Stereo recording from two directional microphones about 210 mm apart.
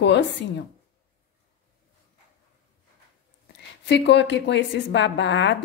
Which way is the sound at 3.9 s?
55° left (ahead or behind).